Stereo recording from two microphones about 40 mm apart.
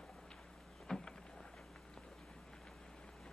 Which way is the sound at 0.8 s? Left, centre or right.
Centre.